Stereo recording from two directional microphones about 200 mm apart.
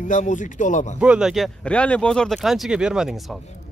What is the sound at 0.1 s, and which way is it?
Speech, 40° left (ahead or behind).